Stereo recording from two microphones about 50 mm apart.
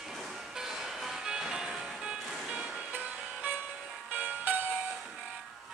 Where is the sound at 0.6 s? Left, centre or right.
Centre.